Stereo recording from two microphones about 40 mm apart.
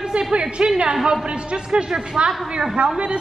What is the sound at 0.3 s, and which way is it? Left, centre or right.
A man's voice, right.